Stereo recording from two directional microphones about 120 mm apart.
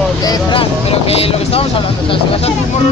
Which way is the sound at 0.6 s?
55° left (ahead or behind).